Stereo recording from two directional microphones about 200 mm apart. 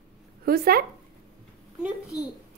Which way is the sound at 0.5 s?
50° right (ahead or behind).